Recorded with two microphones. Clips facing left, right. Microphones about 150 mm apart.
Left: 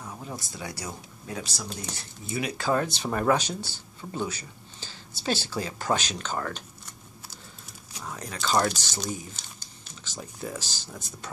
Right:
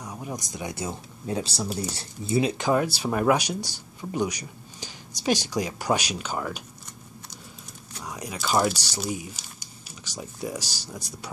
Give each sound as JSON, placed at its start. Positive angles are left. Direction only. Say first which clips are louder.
{"t": 0.0, "sound": "speech", "louder": "right 3 dB", "side_deg": -15}
{"t": 8.0, "sound": "speech", "louder": "right 1 dB", "side_deg": -10}